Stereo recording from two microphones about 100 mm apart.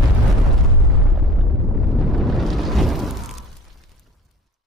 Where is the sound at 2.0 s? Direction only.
Centre (ahead or behind).